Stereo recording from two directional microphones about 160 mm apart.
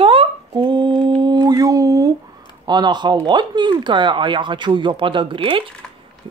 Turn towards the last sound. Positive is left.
turn(degrees=-30)  # may be behind; listen again after turning